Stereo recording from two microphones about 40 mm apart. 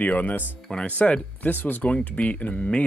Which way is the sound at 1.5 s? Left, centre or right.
Left.